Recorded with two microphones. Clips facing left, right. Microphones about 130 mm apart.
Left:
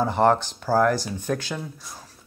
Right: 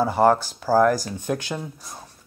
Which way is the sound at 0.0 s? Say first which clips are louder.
Right 2 dB; 5° right (ahead or behind).